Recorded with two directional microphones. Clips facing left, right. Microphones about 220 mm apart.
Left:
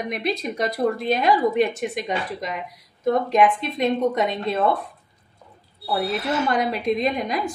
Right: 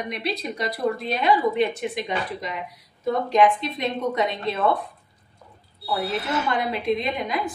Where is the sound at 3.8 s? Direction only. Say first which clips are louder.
Left 7 dB; 50° left (ahead or behind).